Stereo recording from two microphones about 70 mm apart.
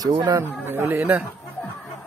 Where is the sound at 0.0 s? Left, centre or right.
Right.